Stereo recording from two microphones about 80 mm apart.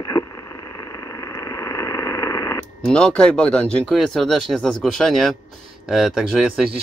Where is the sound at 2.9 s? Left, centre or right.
Centre.